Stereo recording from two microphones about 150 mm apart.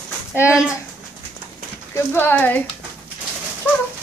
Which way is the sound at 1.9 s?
15° left (ahead or behind).